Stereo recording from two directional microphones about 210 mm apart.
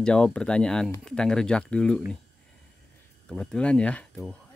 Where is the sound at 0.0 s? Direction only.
5° left (ahead or behind).